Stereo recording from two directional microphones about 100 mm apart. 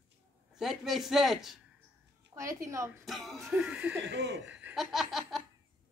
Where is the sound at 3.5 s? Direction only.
10° right (ahead or behind).